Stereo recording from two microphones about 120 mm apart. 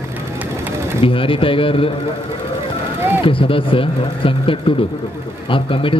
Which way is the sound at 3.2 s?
45° left (ahead or behind).